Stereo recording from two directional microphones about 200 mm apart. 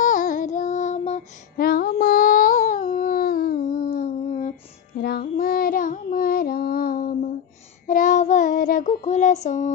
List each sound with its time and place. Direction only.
0.0 s child singing: 40° left (ahead or behind)
1.7 s child singing: 50° left (ahead or behind)